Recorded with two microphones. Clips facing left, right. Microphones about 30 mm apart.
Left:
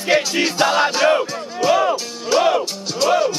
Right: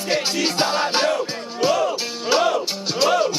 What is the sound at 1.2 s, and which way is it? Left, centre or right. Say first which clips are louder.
Music: left 2 dB; right.